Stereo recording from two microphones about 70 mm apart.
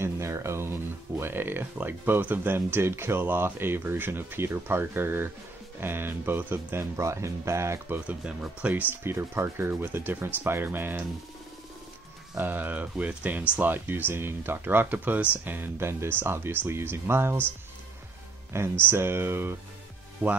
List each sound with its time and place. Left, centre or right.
0.0 s speech: right
8.1 s speech: centre
12.4 s speech: right
18.5 s speech: right